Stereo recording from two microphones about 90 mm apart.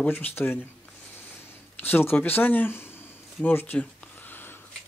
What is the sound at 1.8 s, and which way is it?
Speech, 25° left (ahead or behind).